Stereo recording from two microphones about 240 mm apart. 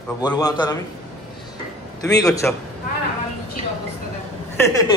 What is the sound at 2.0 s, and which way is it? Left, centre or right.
Speech, centre.